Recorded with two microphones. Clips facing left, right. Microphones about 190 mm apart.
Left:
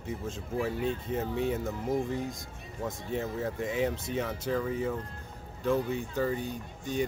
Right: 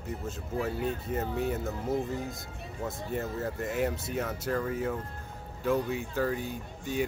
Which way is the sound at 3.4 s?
5° right (ahead or behind).